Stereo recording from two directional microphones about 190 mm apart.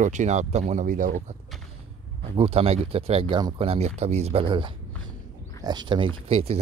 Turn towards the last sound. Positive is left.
turn(degrees=-30)  # may be behind; listen again after turning